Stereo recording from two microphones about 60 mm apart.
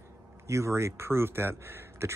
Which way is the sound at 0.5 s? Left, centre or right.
Right.